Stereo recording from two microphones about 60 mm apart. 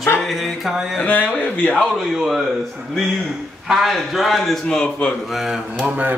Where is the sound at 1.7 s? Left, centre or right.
Centre.